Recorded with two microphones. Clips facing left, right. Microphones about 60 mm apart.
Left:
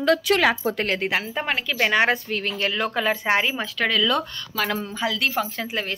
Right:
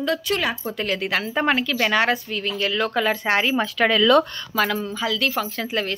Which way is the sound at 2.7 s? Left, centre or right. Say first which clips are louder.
Right 2 dB; centre.